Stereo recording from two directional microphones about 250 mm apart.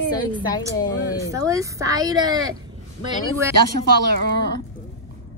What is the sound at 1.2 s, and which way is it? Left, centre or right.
Speech, centre.